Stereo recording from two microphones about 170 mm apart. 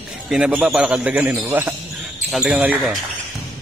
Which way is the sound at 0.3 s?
5° right (ahead or behind).